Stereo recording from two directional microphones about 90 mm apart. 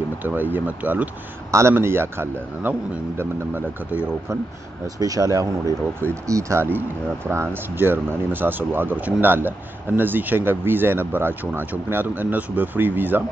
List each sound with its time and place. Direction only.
0.2 s speech: 20° right (ahead or behind)
1.5 s speech: 30° right (ahead or behind)
4.8 s speech: 40° right (ahead or behind); by 13.2 s 20° right (ahead or behind)